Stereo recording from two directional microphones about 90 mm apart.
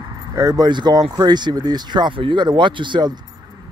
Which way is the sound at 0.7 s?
55° right (ahead or behind).